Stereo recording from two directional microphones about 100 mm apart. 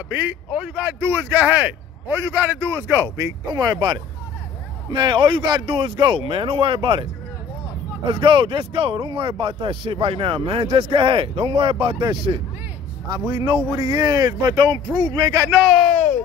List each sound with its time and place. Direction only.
0.1 s a man's voice: 15° right (ahead or behind)
3.4 s a man's voice: 40° right (ahead or behind); by 7.1 s 60° right (ahead or behind)
8.1 s a man's voice: 60° right (ahead or behind); by 11.7 s 75° right (ahead or behind)
12.3 s speech: 50° right (ahead or behind)
15.5 s speech: centre (ahead or behind)